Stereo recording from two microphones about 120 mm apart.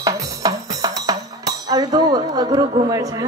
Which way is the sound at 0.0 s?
30° right (ahead or behind).